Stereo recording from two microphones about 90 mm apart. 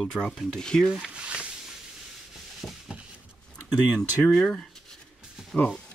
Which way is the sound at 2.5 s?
5° right (ahead or behind).